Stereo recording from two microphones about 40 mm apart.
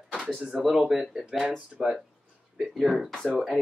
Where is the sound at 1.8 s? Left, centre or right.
Centre.